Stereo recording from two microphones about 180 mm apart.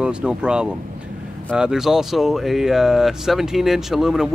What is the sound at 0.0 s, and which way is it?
A man's voice, 5° right (ahead or behind).